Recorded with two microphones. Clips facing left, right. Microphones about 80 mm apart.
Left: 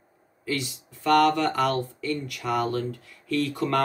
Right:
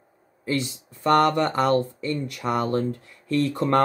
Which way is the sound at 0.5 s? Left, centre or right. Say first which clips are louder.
Right 4 dB; right.